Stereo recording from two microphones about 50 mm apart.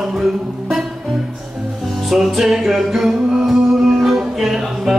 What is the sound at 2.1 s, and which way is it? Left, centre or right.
Music, centre.